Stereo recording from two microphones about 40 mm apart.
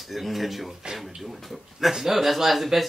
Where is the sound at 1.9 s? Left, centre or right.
Centre.